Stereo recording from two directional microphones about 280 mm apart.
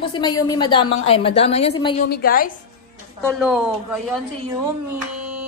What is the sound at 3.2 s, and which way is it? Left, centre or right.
Speech, centre.